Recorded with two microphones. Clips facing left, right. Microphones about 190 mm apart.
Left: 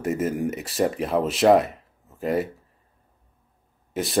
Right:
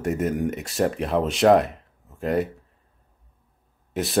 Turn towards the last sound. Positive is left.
turn(degrees=0)  # may be behind; listen again after turning